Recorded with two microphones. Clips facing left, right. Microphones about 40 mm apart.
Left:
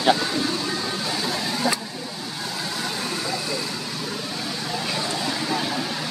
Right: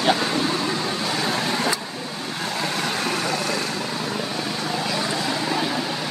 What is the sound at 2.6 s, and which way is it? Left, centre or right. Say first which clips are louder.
Vehicle: right 5 dB; right.